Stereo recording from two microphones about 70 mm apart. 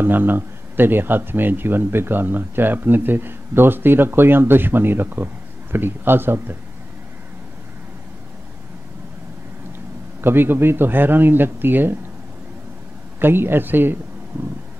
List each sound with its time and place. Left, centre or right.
0.0 s speech: right
10.2 s speech: right
13.2 s speech: right